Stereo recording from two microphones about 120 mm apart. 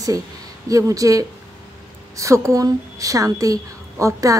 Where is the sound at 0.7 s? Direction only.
30° right (ahead or behind).